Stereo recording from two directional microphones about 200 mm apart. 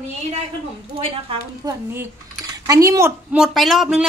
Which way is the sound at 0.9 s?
25° right (ahead or behind).